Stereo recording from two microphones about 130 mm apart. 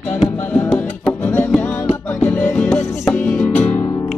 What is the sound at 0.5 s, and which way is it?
Music, 10° left (ahead or behind).